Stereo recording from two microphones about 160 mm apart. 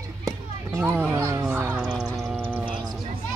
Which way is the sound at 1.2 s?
20° right (ahead or behind).